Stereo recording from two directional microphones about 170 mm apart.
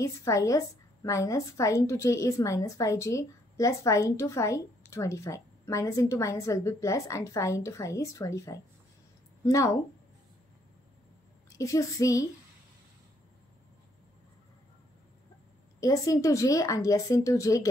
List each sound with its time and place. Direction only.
0.0 s a woman's voice: 20° left (ahead or behind)
11.5 s speech: 20° left (ahead or behind)
15.8 s speech: 20° left (ahead or behind)